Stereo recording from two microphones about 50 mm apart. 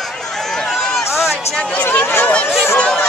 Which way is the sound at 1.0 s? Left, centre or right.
Centre.